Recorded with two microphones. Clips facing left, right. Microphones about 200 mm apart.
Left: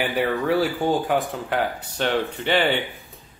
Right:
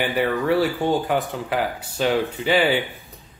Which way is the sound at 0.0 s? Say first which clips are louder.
Right 1 dB; centre (ahead or behind).